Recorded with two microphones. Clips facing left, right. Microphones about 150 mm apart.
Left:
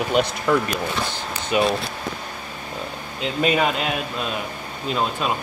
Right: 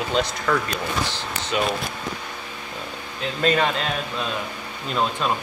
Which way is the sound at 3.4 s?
10° left (ahead or behind).